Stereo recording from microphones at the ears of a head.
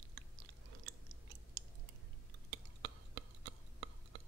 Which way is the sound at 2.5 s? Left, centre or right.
Right.